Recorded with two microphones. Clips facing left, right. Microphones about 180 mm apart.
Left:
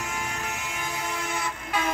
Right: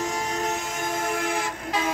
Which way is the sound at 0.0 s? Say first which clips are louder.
Right 6 dB; 35° right (ahead or behind).